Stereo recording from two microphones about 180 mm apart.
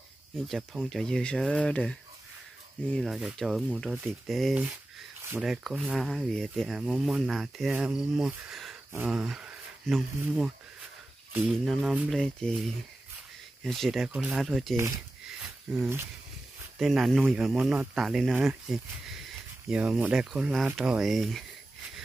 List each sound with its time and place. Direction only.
0.5 s speech: centre (ahead or behind)
11.3 s speech: 5° right (ahead or behind)
13.7 s speech: centre (ahead or behind)
15.2 s a sound: 5° right (ahead or behind)
16.7 s speech: centre (ahead or behind)